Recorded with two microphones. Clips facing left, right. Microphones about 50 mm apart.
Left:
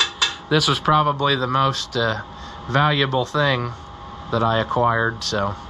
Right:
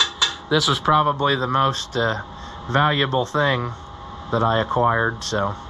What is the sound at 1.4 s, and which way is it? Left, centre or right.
Speech, right.